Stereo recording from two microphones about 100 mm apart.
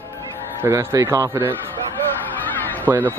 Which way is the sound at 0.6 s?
30° right (ahead or behind).